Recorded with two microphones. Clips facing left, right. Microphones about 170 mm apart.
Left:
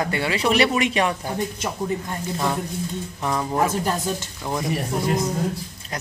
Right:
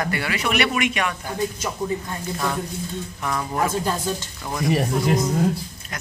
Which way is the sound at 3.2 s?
20° left (ahead or behind).